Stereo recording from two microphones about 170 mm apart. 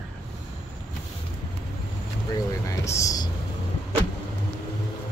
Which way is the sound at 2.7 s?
20° left (ahead or behind).